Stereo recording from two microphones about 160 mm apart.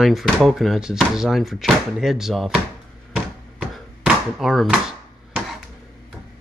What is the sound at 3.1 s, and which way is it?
Chopping, centre (ahead or behind).